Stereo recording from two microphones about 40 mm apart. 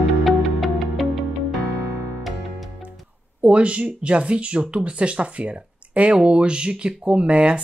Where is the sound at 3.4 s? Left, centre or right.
Right.